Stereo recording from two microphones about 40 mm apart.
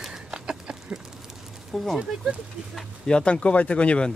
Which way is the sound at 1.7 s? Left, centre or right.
Centre.